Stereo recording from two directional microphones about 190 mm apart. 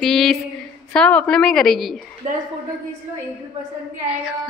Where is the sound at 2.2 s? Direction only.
35° right (ahead or behind).